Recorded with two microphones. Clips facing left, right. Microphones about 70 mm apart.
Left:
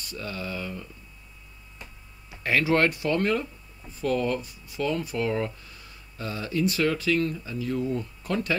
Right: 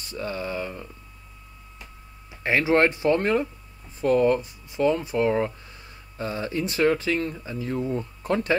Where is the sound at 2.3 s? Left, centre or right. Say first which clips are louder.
Right 2 dB; right.